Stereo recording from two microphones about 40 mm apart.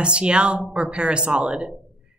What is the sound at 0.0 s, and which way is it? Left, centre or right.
Speech, right.